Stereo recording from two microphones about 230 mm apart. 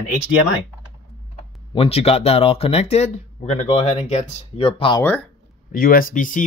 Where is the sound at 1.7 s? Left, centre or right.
Left.